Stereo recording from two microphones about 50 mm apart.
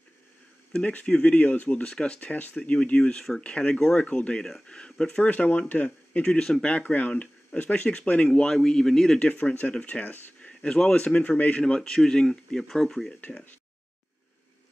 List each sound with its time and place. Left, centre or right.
0.7 s speech: left
4.4 s speech: centre
4.6 s speech: centre
5.2 s speech: left
6.8 s speech: left
8.3 s speech: centre
9.2 s speech: left
10.6 s speech: centre
11.1 s speech: left
11.6 s speech: centre